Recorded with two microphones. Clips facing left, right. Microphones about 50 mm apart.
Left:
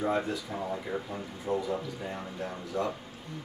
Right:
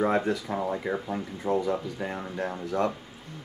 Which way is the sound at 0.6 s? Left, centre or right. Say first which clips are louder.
Right 5 dB; right.